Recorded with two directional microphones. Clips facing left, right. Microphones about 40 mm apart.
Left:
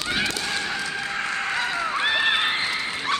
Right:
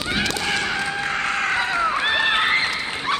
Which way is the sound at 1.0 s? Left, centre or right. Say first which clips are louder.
Right 4 dB; right.